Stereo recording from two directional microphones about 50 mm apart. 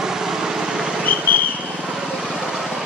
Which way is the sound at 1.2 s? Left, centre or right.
Left.